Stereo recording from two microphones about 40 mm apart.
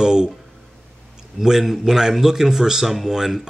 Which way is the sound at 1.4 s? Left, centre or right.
Centre.